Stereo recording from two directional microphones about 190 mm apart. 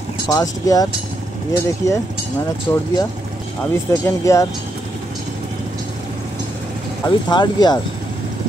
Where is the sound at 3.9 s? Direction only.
15° left (ahead or behind).